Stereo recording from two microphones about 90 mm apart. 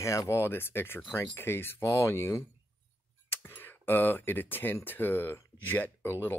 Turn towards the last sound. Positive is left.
turn(degrees=25)  # may be behind; listen again after turning